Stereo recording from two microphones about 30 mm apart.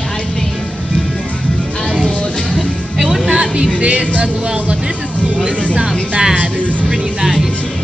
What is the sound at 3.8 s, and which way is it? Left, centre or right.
Music, right.